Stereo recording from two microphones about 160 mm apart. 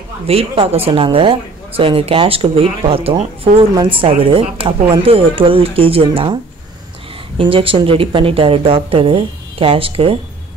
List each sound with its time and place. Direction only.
0.3 s speech: 40° right (ahead or behind)
7.3 s speech: 35° right (ahead or behind)